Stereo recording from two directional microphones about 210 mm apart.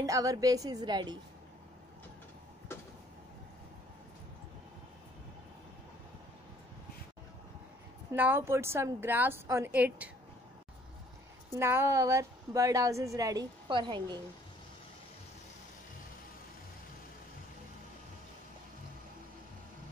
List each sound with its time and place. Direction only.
0.0 s a woman's voice: 15° right (ahead or behind)
2.7 s a sound: 10° left (ahead or behind)
8.1 s a woman's voice: 10° right (ahead or behind)
11.5 s a woman's voice: 10° right (ahead or behind)